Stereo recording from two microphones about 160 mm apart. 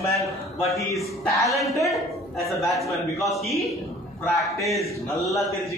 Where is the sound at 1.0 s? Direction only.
Centre (ahead or behind).